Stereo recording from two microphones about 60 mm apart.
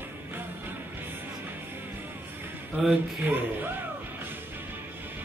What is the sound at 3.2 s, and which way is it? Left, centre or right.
Speech, right.